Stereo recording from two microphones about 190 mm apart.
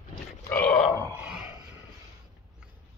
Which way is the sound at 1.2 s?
5° right (ahead or behind).